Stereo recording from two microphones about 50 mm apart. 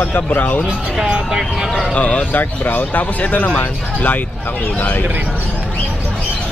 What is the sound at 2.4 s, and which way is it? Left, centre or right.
Speech, left.